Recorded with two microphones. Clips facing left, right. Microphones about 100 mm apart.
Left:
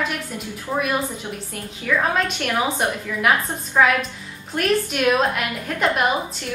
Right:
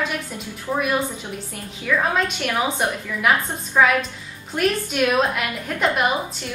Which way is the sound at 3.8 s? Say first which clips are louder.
Even; centre (ahead or behind).